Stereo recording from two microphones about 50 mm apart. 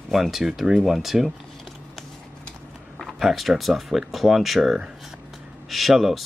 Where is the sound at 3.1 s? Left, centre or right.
Centre.